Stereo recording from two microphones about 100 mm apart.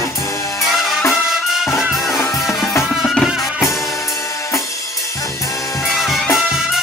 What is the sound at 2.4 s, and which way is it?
Music, centre (ahead or behind).